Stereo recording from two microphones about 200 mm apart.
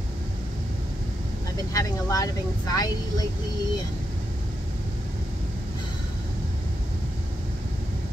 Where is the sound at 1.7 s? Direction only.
15° left (ahead or behind).